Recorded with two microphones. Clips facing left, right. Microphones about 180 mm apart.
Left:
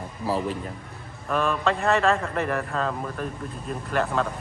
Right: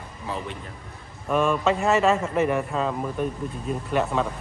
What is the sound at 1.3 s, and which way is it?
A man's voice, centre (ahead or behind).